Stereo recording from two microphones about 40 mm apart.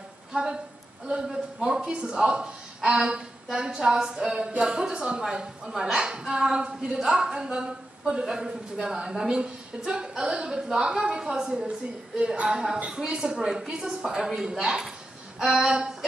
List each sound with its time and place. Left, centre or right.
0.3 s a sound: centre
1.6 s a woman's voice: right
12.7 s a woman's voice: right
13.0 s a woman's voice: centre